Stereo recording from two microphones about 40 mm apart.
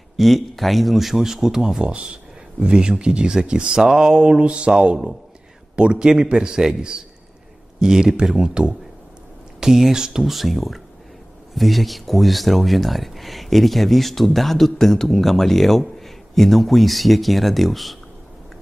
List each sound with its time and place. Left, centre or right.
0.2 s speech: centre
9.6 s speech: centre
10.2 s speech: centre